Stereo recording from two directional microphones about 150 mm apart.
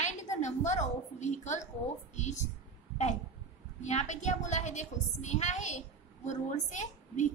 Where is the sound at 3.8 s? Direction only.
50° left (ahead or behind).